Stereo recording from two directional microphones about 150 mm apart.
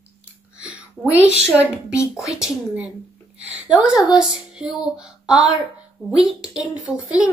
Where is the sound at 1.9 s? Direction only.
20° left (ahead or behind).